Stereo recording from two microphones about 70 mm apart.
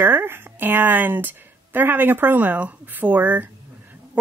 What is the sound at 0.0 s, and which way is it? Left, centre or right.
A woman's voice, right.